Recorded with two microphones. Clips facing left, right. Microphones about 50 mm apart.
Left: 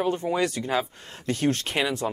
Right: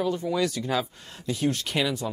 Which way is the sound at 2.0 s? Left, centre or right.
Left.